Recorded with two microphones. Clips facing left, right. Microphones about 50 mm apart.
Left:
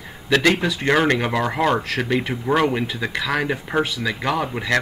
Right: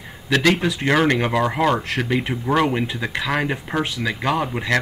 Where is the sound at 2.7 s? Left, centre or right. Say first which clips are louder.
Even; centre.